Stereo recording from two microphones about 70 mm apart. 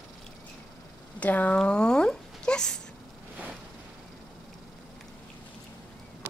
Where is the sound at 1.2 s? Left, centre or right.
Left.